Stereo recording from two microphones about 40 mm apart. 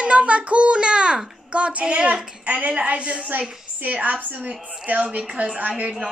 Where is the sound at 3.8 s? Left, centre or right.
Right.